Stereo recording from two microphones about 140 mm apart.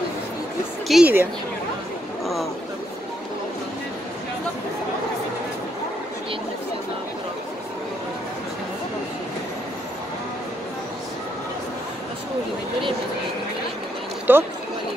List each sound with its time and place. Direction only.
0.8 s speech: 5° right (ahead or behind)
14.3 s speech: 15° right (ahead or behind)